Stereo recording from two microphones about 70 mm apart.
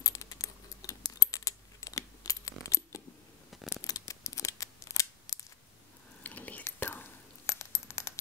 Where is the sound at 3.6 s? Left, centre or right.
Left.